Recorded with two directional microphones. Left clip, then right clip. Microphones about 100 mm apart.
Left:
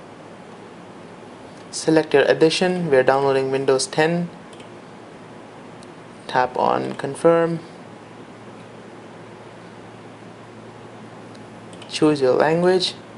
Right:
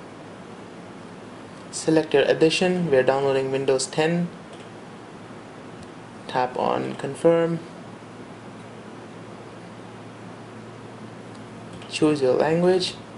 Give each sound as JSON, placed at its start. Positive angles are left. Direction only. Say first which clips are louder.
{"t": 1.8, "sound": "speech", "louder": "left 3 dB", "side_deg": 15}
{"t": 6.2, "sound": "speech", "louder": "left 4 dB", "side_deg": 15}
{"t": 11.9, "sound": "speech", "louder": "left 3 dB", "side_deg": 15}